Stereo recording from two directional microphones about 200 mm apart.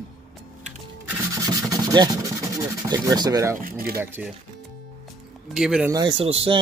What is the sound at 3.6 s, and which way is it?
Speech, 45° right (ahead or behind).